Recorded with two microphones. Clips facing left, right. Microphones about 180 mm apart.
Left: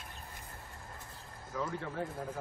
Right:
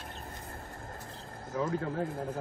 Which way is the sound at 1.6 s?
50° right (ahead or behind).